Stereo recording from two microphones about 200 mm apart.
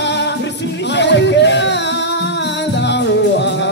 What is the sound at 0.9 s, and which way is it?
Music, 60° left (ahead or behind).